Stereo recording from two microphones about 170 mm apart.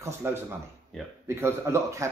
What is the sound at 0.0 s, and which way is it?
Speech, 15° right (ahead or behind).